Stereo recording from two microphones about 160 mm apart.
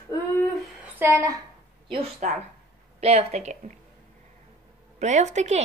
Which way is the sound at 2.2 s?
50° right (ahead or behind).